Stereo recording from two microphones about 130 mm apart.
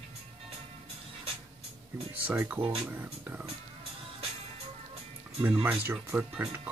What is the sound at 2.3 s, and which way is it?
Speech, 10° right (ahead or behind).